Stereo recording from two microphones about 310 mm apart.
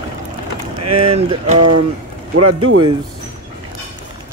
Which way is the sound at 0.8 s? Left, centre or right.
Centre.